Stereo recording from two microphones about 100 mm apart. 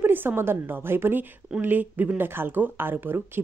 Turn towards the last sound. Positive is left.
turn(degrees=-20)  # may be behind; listen again after turning